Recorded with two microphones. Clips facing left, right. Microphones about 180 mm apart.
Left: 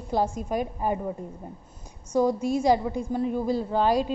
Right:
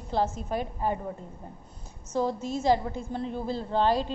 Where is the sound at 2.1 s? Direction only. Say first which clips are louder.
Left 5 dB; 15° left (ahead or behind).